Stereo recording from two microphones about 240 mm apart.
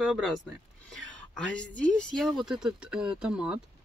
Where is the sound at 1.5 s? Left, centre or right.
Centre.